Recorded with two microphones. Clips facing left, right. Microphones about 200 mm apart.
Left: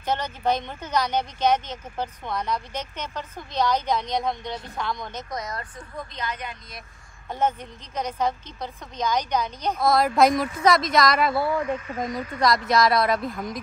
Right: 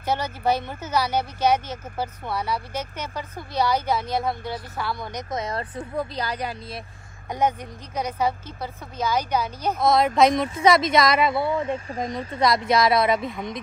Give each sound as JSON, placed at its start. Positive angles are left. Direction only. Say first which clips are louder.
{"t": 0.0, "sound": "speech", "louder": "right 1 dB", "side_deg": -10}
{"t": 5.3, "sound": "speech", "louder": "right 7 dB", "side_deg": -30}
{"t": 7.2, "sound": "a woman's voice", "louder": "right 2 dB", "side_deg": -15}
{"t": 11.3, "sound": "speech", "louder": "even", "side_deg": -25}
{"t": 12.6, "sound": "a woman's voice", "louder": "right 2 dB", "side_deg": 0}